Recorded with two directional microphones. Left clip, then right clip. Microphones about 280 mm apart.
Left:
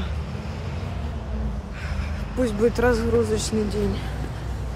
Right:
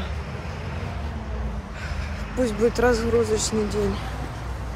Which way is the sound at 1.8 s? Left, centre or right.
Centre.